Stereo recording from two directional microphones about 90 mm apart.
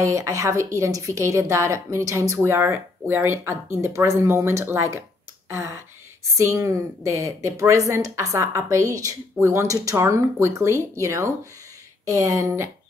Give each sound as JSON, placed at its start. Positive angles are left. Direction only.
{"t": 0.0, "sound": "a woman's voice", "side_deg": -35}